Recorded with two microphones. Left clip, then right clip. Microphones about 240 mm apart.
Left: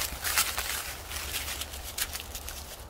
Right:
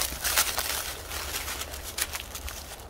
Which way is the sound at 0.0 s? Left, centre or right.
Right.